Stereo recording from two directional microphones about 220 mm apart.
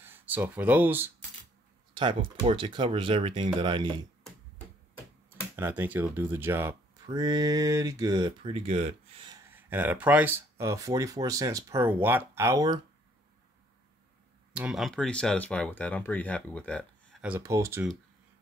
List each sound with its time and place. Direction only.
0.0 s speech: 10° right (ahead or behind)
2.0 s speech: 20° right (ahead or behind)
5.6 s speech: 10° right (ahead or behind); by 9.4 s 25° right (ahead or behind)
9.5 s speech: 10° right (ahead or behind)
14.5 s speech: 5° right (ahead or behind)
17.2 s speech: 10° right (ahead or behind)